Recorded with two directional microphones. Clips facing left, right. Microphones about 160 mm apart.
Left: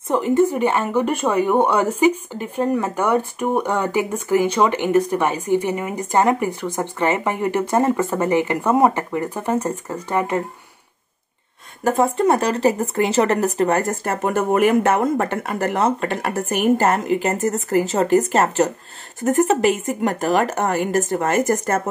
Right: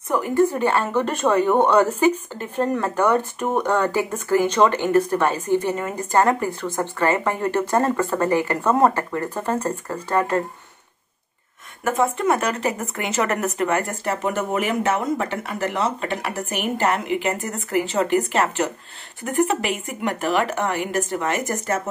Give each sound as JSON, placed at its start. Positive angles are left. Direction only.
{"t": 0.1, "sound": "a woman's voice", "side_deg": 20}
{"t": 11.8, "sound": "a woman's voice", "side_deg": 35}